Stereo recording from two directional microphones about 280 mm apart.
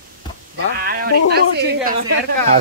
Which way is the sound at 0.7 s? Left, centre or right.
Right.